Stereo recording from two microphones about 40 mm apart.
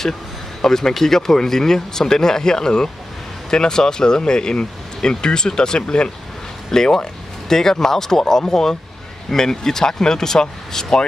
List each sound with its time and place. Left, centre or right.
0.6 s speech: centre